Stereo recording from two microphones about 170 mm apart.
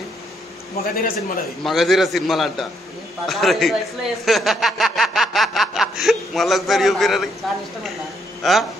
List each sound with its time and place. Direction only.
0.9 s a man's voice: 60° left (ahead or behind)
1.6 s a man's voice: centre (ahead or behind)
8.4 s speech: centre (ahead or behind)